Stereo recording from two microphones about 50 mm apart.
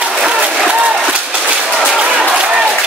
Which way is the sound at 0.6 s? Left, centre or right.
Right.